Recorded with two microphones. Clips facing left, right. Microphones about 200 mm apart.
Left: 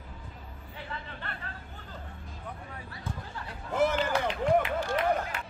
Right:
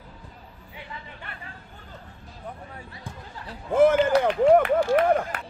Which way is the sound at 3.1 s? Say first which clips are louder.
Left 3 dB; 15° right (ahead or behind).